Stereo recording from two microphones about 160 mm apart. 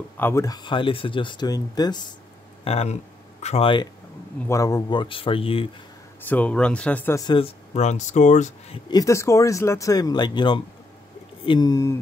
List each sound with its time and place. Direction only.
0.2 s speech: 20° left (ahead or behind)
2.6 s speech: 40° left (ahead or behind)
4.5 s speech: 20° left (ahead or behind)
6.2 s speech: 10° left (ahead or behind)
7.2 s speech: 30° left (ahead or behind)
8.9 s speech: 20° left (ahead or behind)